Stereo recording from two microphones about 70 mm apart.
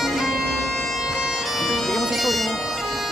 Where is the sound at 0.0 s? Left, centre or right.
Centre.